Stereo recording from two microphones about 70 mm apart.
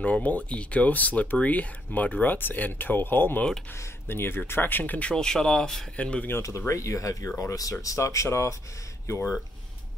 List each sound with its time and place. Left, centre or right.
0.0 s speech: left
5.1 s speech: centre
5.9 s speech: centre
6.4 s speech: left